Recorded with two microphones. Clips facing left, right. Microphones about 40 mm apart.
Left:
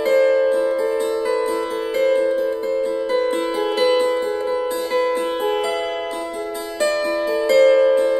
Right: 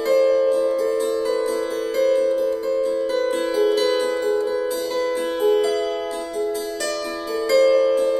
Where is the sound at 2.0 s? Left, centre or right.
Left.